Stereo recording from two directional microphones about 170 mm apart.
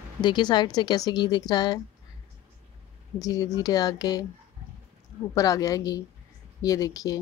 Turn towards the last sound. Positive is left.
turn(degrees=20)  # may be behind; listen again after turning